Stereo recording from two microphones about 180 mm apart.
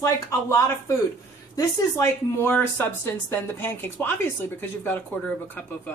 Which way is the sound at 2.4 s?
10° left (ahead or behind).